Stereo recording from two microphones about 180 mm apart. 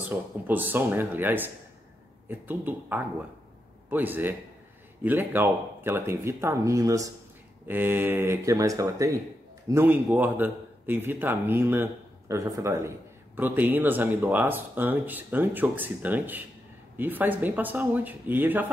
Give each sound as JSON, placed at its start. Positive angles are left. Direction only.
{"t": 0.1, "sound": "a man's voice", "side_deg": -10}